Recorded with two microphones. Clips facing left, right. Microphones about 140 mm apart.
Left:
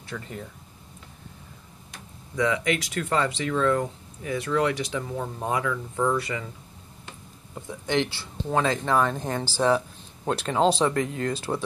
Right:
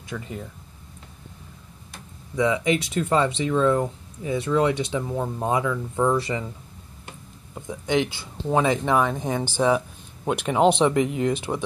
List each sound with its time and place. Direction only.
0.1 s speech: 10° right (ahead or behind)
2.3 s speech: 20° right (ahead or behind)
7.5 s speech: 15° right (ahead or behind)